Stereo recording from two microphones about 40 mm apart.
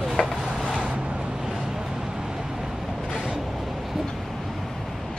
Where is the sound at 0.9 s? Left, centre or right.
Right.